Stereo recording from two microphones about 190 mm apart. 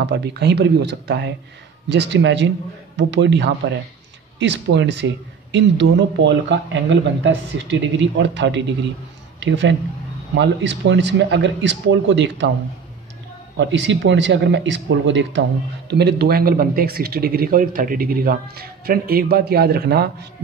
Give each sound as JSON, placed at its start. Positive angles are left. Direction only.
{"t": 0.0, "sound": "speech", "side_deg": -60}
{"t": 13.6, "sound": "speech", "side_deg": -70}
{"t": 15.9, "sound": "speech", "side_deg": -60}